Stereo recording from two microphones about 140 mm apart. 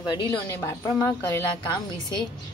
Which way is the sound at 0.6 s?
20° left (ahead or behind).